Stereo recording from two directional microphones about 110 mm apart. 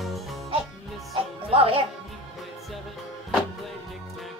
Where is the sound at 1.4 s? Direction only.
60° right (ahead or behind).